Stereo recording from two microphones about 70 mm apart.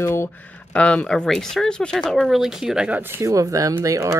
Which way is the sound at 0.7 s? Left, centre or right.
Centre.